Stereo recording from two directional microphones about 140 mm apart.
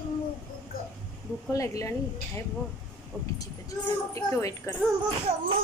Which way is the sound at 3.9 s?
20° left (ahead or behind).